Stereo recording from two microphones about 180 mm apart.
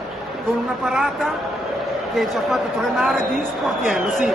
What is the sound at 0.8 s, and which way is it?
Speech, centre (ahead or behind).